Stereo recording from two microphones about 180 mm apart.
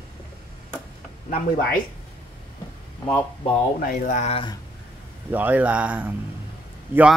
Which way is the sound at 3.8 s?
45° left (ahead or behind).